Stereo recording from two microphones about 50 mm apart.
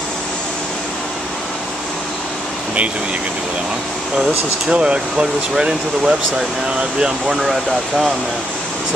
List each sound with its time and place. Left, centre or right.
4.6 s speech: centre